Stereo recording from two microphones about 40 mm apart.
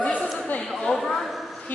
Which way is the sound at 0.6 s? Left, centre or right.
Centre.